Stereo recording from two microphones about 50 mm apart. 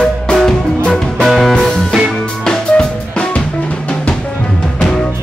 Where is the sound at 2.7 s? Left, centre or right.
Left.